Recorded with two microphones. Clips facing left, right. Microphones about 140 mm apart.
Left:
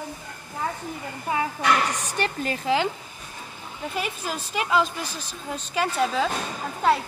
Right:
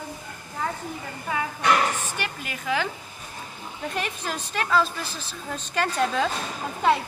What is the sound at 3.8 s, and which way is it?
Speech, 5° left (ahead or behind).